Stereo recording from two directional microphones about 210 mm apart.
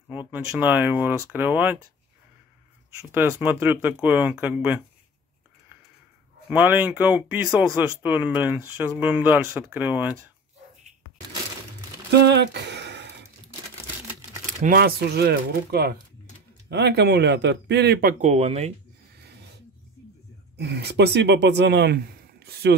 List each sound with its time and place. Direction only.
0.1 s speech: 10° right (ahead or behind)
3.1 s speech: 10° right (ahead or behind)
6.5 s speech: 10° right (ahead or behind)
12.1 s a sound: 55° right (ahead or behind)
14.6 s speech: 45° right (ahead or behind)
18.2 s speech: 30° right (ahead or behind)
19.1 s a sound: 50° right (ahead or behind)
20.5 s speech: 50° right (ahead or behind)